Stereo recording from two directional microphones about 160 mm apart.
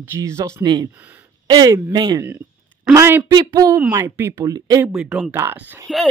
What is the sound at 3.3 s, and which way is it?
Speech, 25° right (ahead or behind).